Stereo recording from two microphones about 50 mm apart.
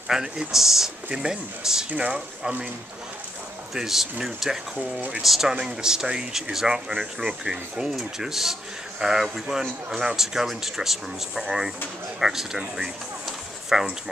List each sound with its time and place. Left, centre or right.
0.1 s speech: centre
1.9 s speech: right
3.7 s speech: centre